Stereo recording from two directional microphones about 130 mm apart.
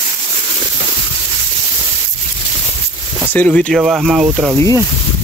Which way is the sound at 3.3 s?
10° left (ahead or behind).